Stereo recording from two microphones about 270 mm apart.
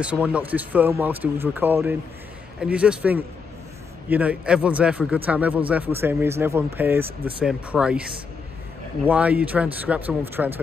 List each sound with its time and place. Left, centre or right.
0.0 s a man's voice: centre